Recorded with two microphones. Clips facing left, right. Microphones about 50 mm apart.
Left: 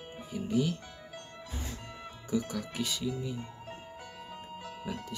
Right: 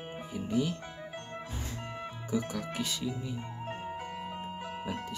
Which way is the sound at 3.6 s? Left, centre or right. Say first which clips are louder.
Right 7 dB; right.